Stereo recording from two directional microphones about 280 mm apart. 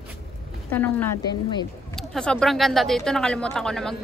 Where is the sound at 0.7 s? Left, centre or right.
Centre.